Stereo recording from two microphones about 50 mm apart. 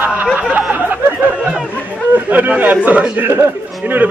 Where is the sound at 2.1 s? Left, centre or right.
Right.